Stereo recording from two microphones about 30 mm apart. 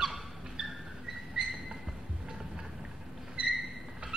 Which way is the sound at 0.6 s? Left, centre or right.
Right.